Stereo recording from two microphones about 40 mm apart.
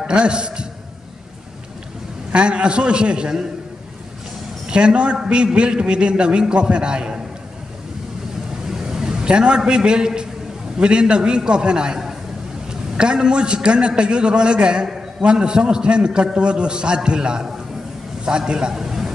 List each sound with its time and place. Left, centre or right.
0.1 s a man's voice: right
2.3 s a man's voice: right
4.6 s a man's voice: right
8.6 s a sound: centre
9.7 s a man's voice: right
18.2 s a sound: right